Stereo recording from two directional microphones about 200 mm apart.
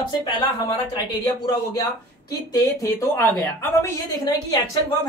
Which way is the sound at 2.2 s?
15° left (ahead or behind).